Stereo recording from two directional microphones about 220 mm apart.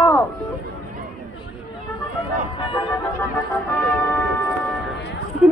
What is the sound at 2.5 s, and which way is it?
Music, 20° left (ahead or behind).